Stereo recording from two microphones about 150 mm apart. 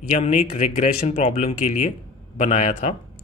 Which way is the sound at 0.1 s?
50° left (ahead or behind).